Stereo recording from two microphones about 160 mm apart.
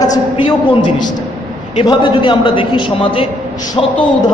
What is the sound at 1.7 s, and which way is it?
A man's voice, 30° left (ahead or behind).